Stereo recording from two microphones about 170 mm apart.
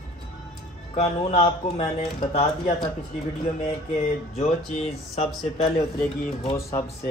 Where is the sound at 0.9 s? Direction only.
35° left (ahead or behind).